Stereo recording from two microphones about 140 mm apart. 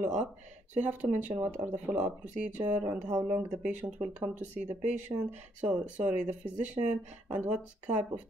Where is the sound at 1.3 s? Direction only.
15° right (ahead or behind).